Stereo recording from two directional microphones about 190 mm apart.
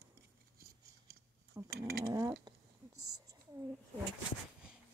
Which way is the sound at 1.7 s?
55° right (ahead or behind).